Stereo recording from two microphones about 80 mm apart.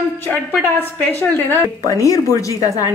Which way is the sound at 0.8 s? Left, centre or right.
Left.